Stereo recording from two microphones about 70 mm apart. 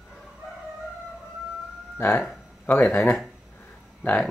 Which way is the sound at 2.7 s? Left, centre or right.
Left.